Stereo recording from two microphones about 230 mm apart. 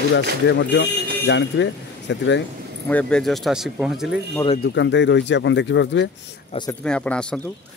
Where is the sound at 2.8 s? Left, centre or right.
Centre.